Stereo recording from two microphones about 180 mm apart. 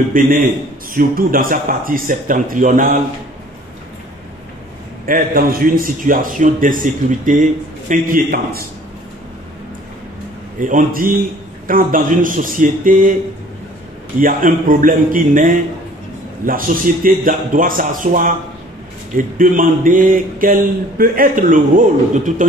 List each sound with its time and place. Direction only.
0.2 s a man's voice: 50° right (ahead or behind)
5.0 s a man's voice: 50° right (ahead or behind)
10.6 s a man's voice: 45° right (ahead or behind)
14.1 s a man's voice: 50° right (ahead or behind)